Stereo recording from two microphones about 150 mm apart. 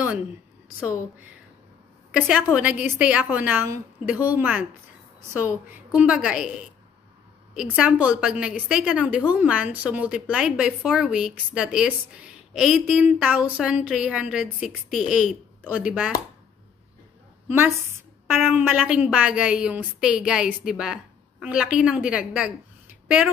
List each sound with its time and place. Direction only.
2.1 s a woman's voice: 5° right (ahead or behind)
5.9 s speech: 5° right (ahead or behind)
7.5 s a woman's voice: 5° right (ahead or behind)
17.5 s a woman's voice: 15° right (ahead or behind)